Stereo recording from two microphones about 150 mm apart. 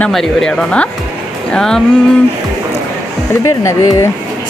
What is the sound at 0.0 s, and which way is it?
Speech, 5° left (ahead or behind).